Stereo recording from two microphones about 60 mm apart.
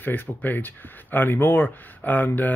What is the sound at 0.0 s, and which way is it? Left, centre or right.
Speech, left.